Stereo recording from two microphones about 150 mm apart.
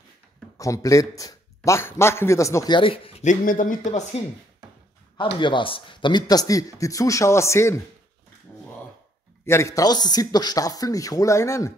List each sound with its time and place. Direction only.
0.6 s a man's voice: 20° left (ahead or behind); by 4.0 s 65° left (ahead or behind)
5.1 s a man's voice: 35° left (ahead or behind)
9.5 s a man's voice: 20° left (ahead or behind)